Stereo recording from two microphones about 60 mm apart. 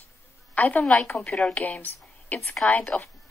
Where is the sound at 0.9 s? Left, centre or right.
Centre.